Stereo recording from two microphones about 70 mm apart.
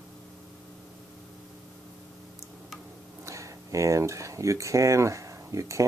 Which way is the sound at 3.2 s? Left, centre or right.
Right.